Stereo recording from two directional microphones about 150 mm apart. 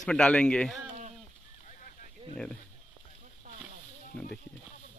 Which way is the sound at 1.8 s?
65° left (ahead or behind).